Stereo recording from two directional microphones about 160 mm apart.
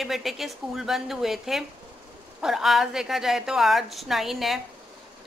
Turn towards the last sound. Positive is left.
turn(degrees=0)  # may be behind; listen again after turning